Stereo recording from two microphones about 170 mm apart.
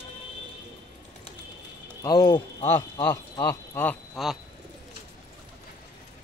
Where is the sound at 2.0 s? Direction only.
25° left (ahead or behind).